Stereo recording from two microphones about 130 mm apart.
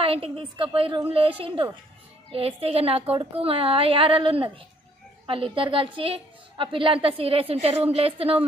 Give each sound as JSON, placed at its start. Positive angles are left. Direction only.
{"t": 0.0, "sound": "a woman's voice", "side_deg": -45}